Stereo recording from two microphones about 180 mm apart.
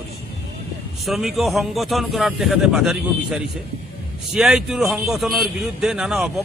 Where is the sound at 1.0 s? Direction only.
Centre (ahead or behind).